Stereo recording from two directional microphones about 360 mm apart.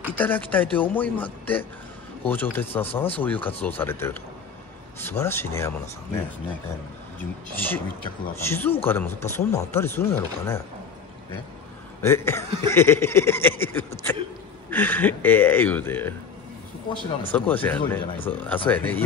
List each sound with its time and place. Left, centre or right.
0.0 s speech: centre
7.2 s speech: centre
12.0 s speech: centre